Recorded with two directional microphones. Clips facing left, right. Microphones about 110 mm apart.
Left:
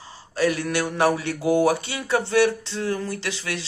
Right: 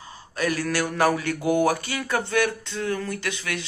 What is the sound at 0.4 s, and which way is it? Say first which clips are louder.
Speech: left 2 dB; 25° left (ahead or behind).